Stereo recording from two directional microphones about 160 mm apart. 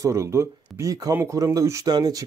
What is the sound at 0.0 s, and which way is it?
A man's voice, 20° right (ahead or behind).